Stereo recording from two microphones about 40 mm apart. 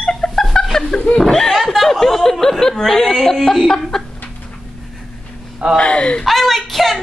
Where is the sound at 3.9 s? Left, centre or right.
Centre.